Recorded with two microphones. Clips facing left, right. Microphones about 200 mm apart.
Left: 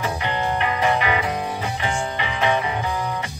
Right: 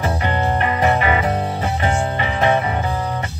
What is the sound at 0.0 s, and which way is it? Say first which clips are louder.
Music: right 4 dB; 45° right (ahead or behind).